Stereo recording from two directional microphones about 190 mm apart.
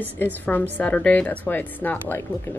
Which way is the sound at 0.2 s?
10° left (ahead or behind).